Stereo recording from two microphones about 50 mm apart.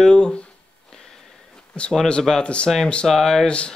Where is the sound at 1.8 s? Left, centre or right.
Left.